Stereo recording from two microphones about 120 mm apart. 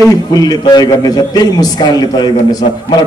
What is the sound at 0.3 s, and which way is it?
A man's voice, 30° left (ahead or behind).